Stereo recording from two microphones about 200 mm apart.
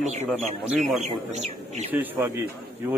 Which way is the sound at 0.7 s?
35° right (ahead or behind).